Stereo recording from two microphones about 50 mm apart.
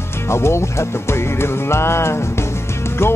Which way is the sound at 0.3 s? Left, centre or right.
Left.